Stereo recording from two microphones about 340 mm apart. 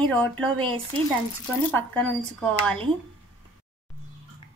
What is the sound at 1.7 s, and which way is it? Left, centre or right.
Speech, centre.